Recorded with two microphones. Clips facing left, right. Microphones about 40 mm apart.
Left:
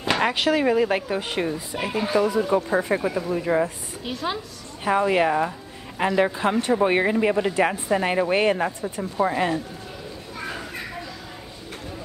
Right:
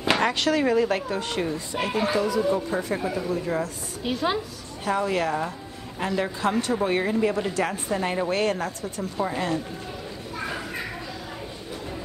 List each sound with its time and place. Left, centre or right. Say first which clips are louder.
0.2 s a woman's voice: left 2 dB; centre
2.1 s speech: left 6 dB; left
4.0 s a woman's voice: right 3 dB; centre
4.8 s speech: left 5 dB; left